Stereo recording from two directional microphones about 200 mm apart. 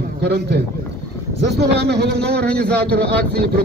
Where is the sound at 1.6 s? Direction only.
55° right (ahead or behind).